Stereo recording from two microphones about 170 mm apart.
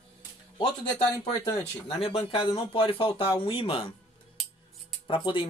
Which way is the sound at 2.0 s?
35° left (ahead or behind).